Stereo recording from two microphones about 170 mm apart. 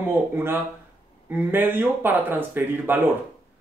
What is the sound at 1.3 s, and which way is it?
Speech, 10° right (ahead or behind).